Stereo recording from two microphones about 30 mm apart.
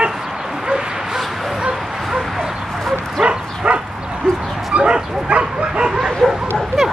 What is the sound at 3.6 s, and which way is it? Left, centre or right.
Bow-wow, right.